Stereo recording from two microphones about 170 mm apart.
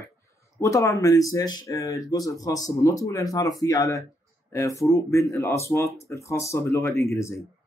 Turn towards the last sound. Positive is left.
turn(degrees=15)  # may be behind; listen again after turning